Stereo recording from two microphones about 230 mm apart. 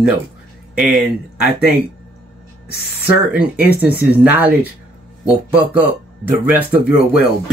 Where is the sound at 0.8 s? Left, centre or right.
Centre.